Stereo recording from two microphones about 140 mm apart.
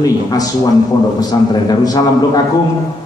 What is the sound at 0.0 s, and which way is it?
Speech, 25° left (ahead or behind).